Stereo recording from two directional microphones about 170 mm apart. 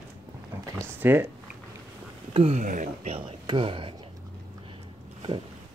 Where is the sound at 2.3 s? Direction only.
35° right (ahead or behind).